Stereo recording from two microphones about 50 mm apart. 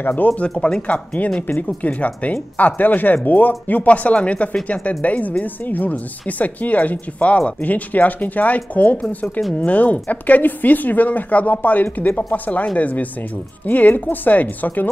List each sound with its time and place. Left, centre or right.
0.0 s speech: left
0.4 s speech: left
9.4 s speech: centre
9.7 s speech: left